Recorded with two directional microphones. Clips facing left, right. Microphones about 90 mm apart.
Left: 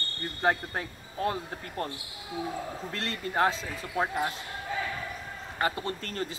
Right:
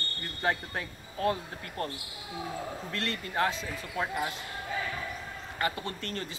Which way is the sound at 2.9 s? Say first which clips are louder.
Left 2 dB; 30° left (ahead or behind).